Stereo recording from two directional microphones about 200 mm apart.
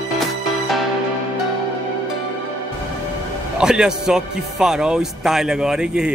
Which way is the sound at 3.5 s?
5° right (ahead or behind).